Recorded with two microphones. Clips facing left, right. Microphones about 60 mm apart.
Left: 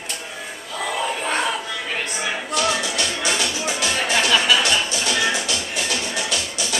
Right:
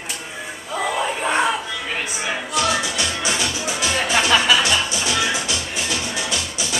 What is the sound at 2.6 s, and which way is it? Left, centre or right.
Music, centre.